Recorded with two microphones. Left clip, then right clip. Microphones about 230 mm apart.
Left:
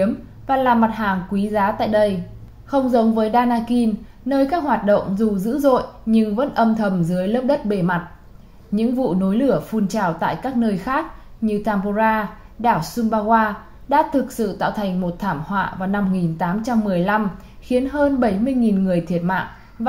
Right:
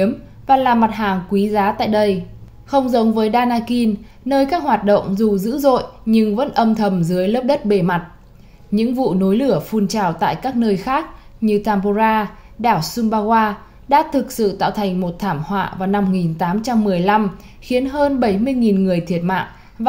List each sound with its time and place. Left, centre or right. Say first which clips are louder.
0.0 s speech: right 2 dB; right